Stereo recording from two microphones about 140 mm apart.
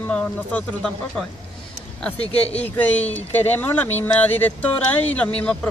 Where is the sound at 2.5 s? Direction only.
10° left (ahead or behind).